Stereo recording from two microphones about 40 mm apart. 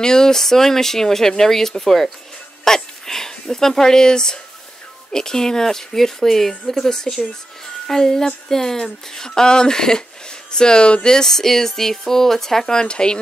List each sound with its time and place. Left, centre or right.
0.0 s speech: centre